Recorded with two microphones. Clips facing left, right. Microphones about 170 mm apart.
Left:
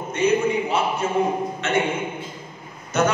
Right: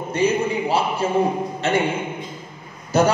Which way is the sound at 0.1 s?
35° right (ahead or behind).